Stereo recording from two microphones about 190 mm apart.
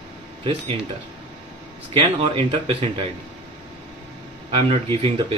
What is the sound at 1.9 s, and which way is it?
Speech, 25° right (ahead or behind).